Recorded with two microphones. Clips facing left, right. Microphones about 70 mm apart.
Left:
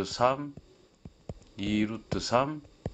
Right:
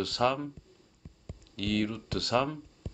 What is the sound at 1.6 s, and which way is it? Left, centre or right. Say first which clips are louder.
Speech: left 1 dB; centre.